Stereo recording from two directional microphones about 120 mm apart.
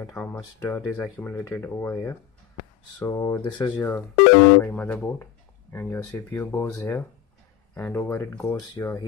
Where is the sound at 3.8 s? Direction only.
15° left (ahead or behind).